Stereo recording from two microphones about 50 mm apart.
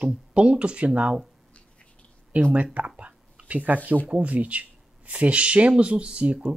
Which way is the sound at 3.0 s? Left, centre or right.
Right.